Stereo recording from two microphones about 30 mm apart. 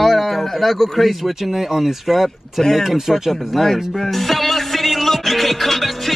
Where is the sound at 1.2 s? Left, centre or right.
Centre.